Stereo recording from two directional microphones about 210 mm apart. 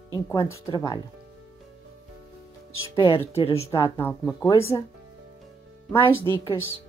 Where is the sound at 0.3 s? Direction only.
15° left (ahead or behind).